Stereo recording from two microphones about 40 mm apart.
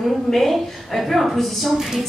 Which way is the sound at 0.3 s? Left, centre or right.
Centre.